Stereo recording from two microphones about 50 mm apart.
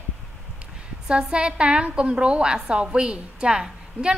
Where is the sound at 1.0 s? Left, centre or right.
Centre.